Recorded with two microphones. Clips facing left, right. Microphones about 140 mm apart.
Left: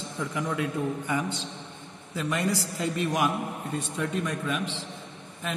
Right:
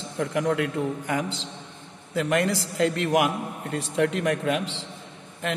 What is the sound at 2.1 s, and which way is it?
A man's voice, 80° right.